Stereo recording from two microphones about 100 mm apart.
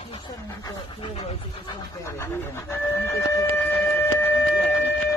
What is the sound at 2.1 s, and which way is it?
Speech, 25° left (ahead or behind).